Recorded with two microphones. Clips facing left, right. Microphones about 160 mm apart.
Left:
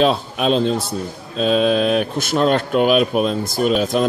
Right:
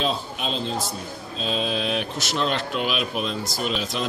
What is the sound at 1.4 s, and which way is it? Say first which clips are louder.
Speech: left 10 dB; 55° left (ahead or behind).